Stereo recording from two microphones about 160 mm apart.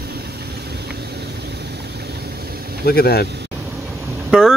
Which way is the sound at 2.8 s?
75° left (ahead or behind).